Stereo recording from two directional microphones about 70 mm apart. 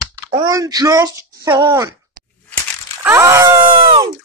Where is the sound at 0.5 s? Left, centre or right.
Right.